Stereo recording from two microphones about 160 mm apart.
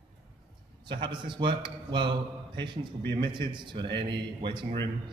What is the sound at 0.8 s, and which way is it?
A man's voice, 30° right (ahead or behind).